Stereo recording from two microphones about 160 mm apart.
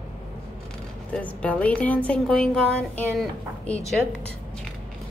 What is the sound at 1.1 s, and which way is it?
A woman's voice, 10° left (ahead or behind).